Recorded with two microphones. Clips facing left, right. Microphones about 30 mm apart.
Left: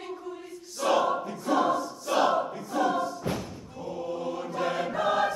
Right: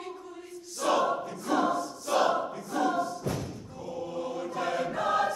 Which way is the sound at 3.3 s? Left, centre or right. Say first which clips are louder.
Left 2 dB; left.